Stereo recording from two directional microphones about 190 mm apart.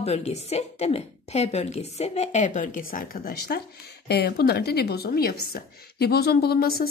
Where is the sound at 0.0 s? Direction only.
35° left (ahead or behind).